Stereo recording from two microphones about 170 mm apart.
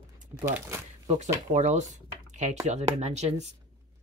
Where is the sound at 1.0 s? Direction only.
40° right (ahead or behind).